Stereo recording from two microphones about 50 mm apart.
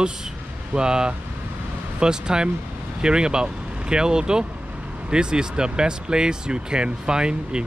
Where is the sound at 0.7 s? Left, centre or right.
Centre.